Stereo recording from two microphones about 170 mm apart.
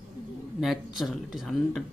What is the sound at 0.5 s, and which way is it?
Speech, centre (ahead or behind).